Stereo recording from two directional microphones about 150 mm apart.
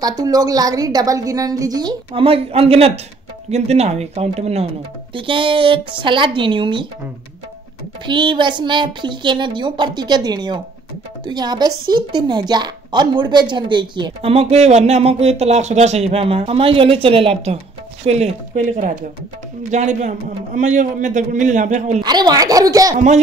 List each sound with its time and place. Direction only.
0.2 s a woman's voice: 25° right (ahead or behind); by 4.6 s 45° right (ahead or behind)
5.1 s a woman's voice: 35° right (ahead or behind)
8.1 s a woman's voice: 30° right (ahead or behind)
14.3 s a man's voice: 45° right (ahead or behind)
22.0 s a woman's voice: 30° right (ahead or behind)